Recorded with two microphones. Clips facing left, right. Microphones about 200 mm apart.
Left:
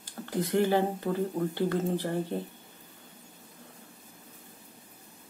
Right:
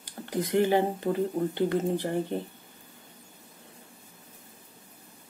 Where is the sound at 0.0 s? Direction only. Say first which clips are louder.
Right 1 dB; 15° right (ahead or behind).